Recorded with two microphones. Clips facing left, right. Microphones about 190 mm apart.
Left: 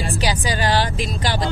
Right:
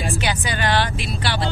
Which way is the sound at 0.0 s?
35° left (ahead or behind).